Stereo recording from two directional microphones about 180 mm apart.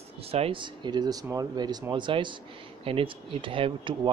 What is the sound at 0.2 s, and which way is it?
Speech, 35° right (ahead or behind).